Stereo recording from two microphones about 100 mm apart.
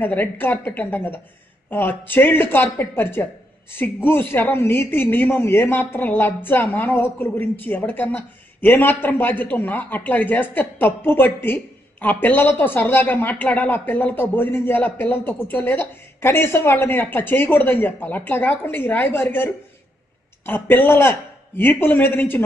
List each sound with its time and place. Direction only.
0.0 s a woman's voice: 20° left (ahead or behind)